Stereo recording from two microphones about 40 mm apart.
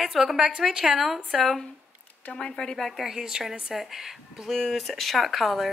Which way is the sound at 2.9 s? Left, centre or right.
Centre.